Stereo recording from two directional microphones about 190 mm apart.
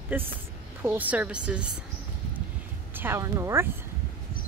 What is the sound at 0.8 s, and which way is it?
Speech, 10° right (ahead or behind).